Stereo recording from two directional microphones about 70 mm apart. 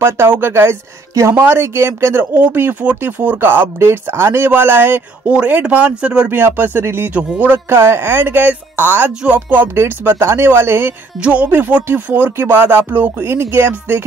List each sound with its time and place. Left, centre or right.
0.0 s speech: right
5.3 s speech: centre
6.3 s speech: right
7.2 s speech: centre
7.4 s speech: right